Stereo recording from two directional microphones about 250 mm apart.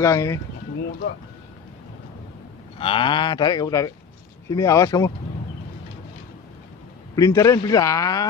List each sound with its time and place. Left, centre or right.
0.0 s speech: centre
2.8 s speech: centre
7.2 s speech: centre